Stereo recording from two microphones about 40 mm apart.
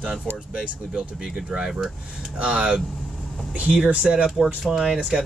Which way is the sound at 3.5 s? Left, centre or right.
Right.